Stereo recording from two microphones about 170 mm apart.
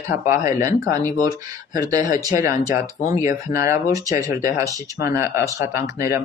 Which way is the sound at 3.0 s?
55° left (ahead or behind).